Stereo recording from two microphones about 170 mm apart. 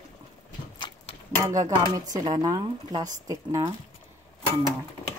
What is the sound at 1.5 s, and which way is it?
Speech, 20° right (ahead or behind).